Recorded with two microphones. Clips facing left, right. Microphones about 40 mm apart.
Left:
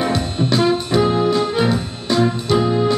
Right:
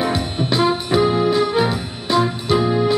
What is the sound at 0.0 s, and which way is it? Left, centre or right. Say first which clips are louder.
Music: left 1 dB; centre.